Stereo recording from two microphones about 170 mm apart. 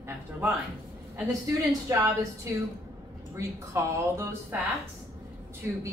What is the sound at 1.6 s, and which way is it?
Speech, 20° right (ahead or behind).